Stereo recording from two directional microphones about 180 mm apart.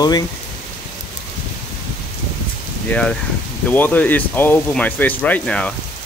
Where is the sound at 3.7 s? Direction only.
10° left (ahead or behind).